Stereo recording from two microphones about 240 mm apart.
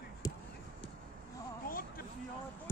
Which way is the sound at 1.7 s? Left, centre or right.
Left.